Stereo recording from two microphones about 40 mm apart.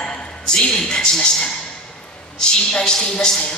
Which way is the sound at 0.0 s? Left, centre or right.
Left.